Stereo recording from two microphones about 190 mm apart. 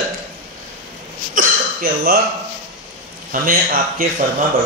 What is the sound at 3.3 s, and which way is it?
Speech, 50° right (ahead or behind).